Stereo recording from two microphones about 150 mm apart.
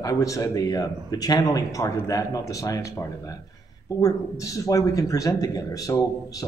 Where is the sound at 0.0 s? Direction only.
25° left (ahead or behind).